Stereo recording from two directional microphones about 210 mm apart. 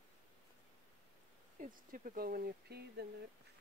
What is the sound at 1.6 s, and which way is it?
Speech, 40° right (ahead or behind).